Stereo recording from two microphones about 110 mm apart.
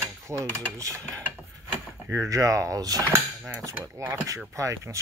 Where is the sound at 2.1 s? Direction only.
25° right (ahead or behind).